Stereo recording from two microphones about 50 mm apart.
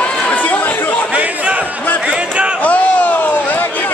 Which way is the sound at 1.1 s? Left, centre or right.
Right.